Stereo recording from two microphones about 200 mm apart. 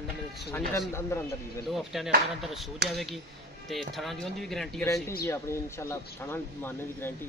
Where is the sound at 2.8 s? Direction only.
60° right (ahead or behind).